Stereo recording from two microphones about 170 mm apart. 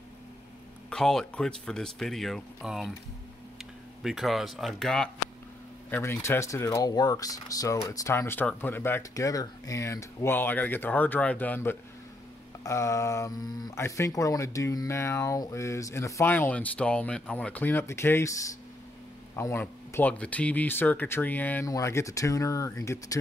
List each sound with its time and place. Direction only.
0.8 s speech: 5° left (ahead or behind)
4.0 s speech: centre (ahead or behind); by 23.1 s 20° left (ahead or behind)